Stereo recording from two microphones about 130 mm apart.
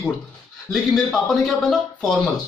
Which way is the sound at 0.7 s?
5° left (ahead or behind).